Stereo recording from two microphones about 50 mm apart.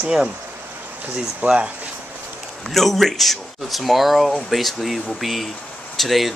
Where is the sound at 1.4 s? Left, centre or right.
Right.